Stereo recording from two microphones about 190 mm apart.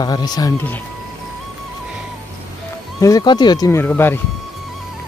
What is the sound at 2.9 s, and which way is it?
Speech, 15° left (ahead or behind).